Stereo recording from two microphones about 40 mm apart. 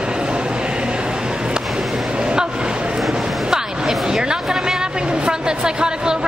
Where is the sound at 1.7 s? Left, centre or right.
Centre.